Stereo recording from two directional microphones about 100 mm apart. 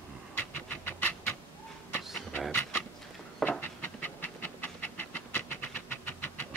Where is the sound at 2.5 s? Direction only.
20° left (ahead or behind).